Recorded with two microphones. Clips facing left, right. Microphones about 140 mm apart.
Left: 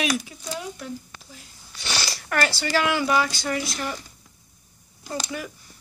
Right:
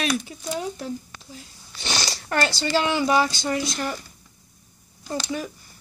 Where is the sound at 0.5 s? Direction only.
35° right (ahead or behind).